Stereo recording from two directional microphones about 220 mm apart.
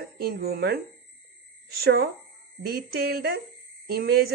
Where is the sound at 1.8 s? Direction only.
45° right (ahead or behind).